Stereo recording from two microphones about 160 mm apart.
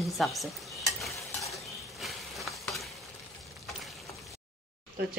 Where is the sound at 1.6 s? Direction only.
Centre (ahead or behind).